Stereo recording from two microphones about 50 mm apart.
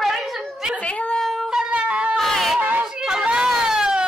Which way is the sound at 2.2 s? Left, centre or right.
Centre.